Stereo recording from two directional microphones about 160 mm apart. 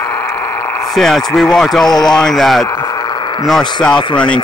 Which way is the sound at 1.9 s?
25° left (ahead or behind).